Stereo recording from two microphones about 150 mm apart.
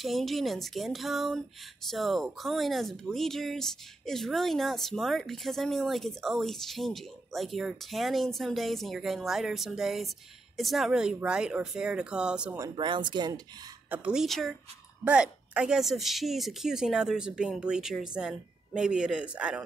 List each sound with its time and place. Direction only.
0.0 s speech: centre (ahead or behind)
12.7 s speech: 30° right (ahead or behind)
13.8 s speech: 10° right (ahead or behind)